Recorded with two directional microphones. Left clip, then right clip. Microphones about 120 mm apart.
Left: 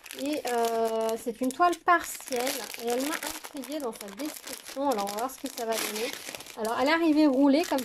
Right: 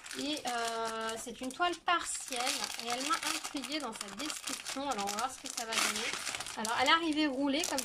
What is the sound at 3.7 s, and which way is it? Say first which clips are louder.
Speech: left 8 dB; 45° left (ahead or behind).